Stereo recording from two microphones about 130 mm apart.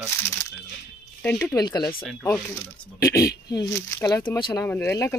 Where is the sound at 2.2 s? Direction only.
20° left (ahead or behind).